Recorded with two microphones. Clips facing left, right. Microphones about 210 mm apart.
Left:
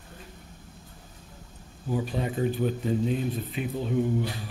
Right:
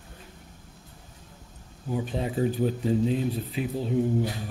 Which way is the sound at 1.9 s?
25° right (ahead or behind).